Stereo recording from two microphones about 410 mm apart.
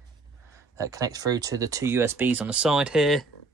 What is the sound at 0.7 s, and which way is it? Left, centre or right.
Speech, centre.